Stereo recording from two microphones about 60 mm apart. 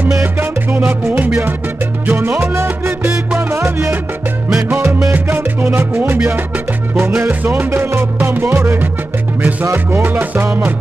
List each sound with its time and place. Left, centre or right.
0.2 s music: right
2.0 s music: right
5.1 s music: right
9.8 s music: right